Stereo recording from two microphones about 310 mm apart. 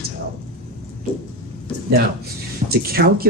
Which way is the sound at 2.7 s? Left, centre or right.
Right.